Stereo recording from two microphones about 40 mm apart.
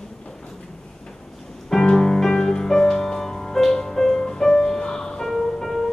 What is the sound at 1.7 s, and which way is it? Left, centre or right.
Music, centre.